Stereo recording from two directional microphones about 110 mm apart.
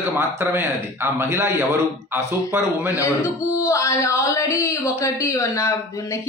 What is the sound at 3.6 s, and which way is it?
Speech, 25° left (ahead or behind).